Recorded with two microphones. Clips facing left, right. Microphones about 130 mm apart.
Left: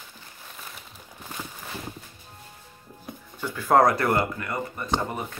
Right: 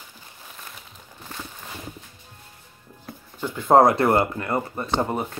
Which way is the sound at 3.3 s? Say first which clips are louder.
Right 4 dB; 20° right (ahead or behind).